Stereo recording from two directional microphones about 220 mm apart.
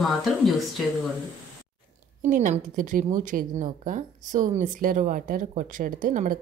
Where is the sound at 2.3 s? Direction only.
35° right (ahead or behind).